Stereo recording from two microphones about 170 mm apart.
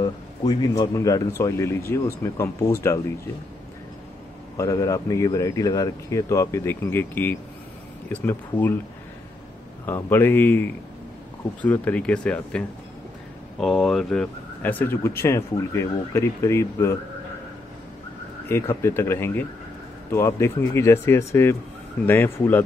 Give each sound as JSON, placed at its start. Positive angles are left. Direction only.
{"t": 0.0, "sound": "speech", "side_deg": 25}
{"t": 4.6, "sound": "speech", "side_deg": 20}
{"t": 9.8, "sound": "speech", "side_deg": 10}
{"t": 18.5, "sound": "speech", "side_deg": 15}